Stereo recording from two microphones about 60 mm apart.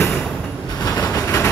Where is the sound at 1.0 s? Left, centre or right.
Left.